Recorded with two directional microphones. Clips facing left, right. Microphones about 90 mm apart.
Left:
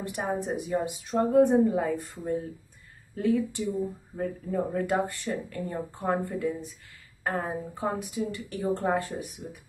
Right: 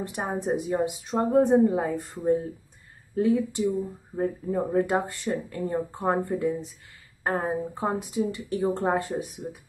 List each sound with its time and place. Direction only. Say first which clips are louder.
0.1 s speech: right 1 dB; 30° right (ahead or behind)
3.2 s speech: right 3 dB; 20° right (ahead or behind)